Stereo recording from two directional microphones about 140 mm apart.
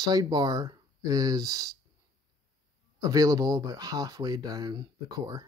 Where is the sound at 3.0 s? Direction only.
25° right (ahead or behind).